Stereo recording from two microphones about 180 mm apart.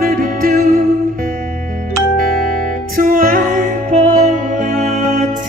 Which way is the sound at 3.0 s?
50° right (ahead or behind).